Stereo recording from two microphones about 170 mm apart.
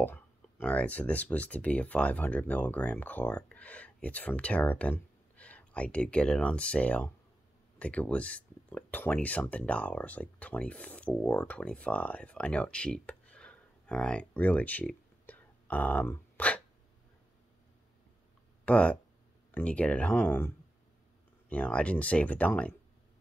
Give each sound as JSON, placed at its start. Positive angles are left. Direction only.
{"t": 0.0, "sound": "speech", "side_deg": 10}
{"t": 18.7, "sound": "speech", "side_deg": 10}